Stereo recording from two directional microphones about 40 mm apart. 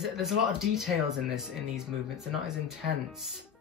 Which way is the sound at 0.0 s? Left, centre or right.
Centre.